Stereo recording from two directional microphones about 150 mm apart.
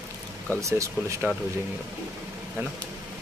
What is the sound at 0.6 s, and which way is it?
Speech, 20° right (ahead or behind).